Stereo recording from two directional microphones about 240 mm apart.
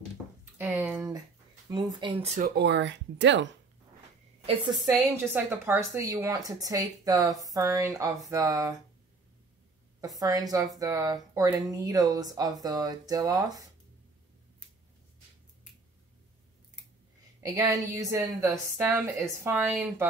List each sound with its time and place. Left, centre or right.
0.6 s a woman's voice: centre; by 2.4 s right
2.4 s speech: right
4.5 s a woman's voice: centre
9.9 s a woman's voice: centre
17.4 s a woman's voice: centre